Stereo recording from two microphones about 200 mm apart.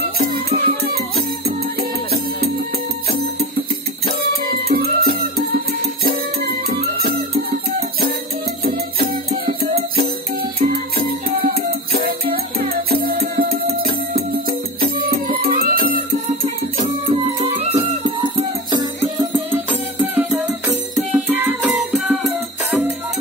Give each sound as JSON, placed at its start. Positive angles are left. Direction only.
{"t": 0.2, "sound": "music", "side_deg": -50}
{"t": 8.6, "sound": "music", "side_deg": -50}
{"t": 19.5, "sound": "music", "side_deg": -10}